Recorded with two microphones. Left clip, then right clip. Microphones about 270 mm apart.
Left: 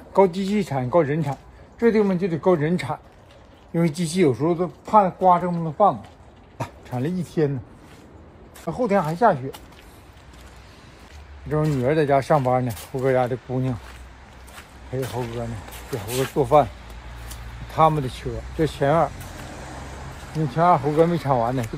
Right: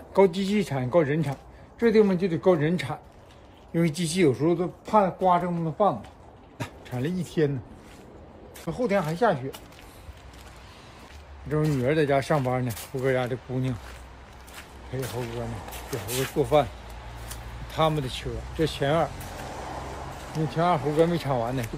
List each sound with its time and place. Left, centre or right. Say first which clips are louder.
0.1 s a man's voice: left 3 dB; centre
8.7 s speech: left 4 dB; centre
11.4 s a man's voice: left 3 dB; centre
14.5 s a sound: left 5 dB; centre
15.9 s speech: left 5 dB; centre
17.7 s speech: left 6 dB; centre
19.3 s a sound: right 2 dB; right
20.5 s speech: left 6 dB; left